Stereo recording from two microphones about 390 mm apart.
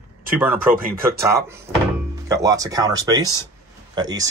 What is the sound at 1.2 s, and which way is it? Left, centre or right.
Speech, centre.